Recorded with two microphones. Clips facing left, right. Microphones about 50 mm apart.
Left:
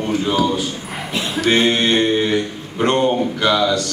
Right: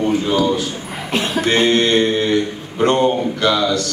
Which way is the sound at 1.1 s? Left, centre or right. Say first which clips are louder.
Right 4 dB; right.